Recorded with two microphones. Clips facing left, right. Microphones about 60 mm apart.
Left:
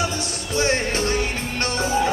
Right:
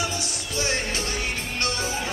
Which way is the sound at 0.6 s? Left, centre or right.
Left.